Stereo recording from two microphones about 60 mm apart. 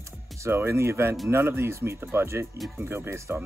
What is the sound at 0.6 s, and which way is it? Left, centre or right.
Speech, right.